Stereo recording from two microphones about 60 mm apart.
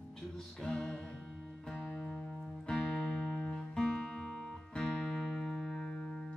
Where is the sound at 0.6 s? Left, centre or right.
Centre.